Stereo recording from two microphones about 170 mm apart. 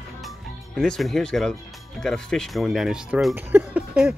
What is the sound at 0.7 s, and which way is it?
Speech, centre (ahead or behind).